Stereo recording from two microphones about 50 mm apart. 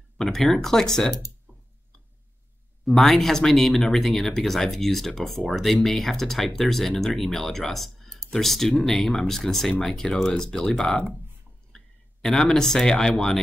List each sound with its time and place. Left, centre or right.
0.2 s speech: centre
2.8 s speech: centre
11.7 s a sound: centre
13.1 s speech: left